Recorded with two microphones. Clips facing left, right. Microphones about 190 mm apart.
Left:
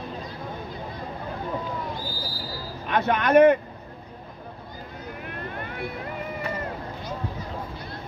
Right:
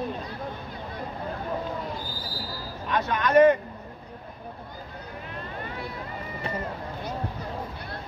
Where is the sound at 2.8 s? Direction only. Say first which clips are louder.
Left 3 dB; 60° left (ahead or behind).